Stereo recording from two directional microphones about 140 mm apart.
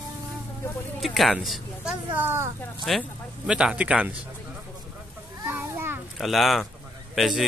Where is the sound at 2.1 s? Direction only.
15° right (ahead or behind).